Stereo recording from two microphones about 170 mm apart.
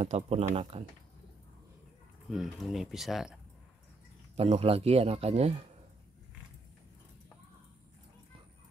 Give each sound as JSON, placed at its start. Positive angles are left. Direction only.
{"t": 0.0, "sound": "a man's voice", "side_deg": -40}
{"t": 2.2, "sound": "speech", "side_deg": 0}
{"t": 4.4, "sound": "a man's voice", "side_deg": -35}